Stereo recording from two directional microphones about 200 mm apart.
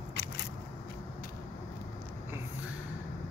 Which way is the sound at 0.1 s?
55° left (ahead or behind).